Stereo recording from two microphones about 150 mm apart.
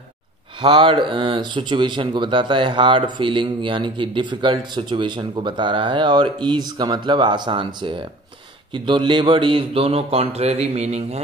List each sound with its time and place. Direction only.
0.6 s speech: 35° right (ahead or behind)